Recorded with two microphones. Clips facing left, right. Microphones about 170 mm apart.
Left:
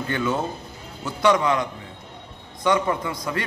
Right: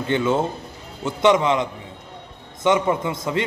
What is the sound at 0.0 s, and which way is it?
A man's voice, 25° right (ahead or behind).